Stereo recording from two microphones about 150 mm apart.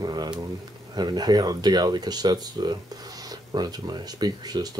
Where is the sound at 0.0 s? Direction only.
25° right (ahead or behind).